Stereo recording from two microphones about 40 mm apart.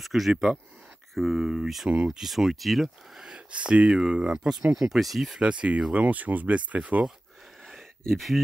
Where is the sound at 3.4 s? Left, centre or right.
Right; by 4.9 s centre.